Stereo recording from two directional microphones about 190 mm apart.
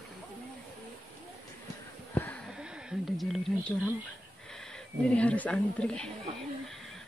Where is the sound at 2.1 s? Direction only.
10° left (ahead or behind).